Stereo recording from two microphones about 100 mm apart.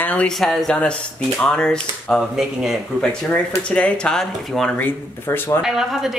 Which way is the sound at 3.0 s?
10° left (ahead or behind).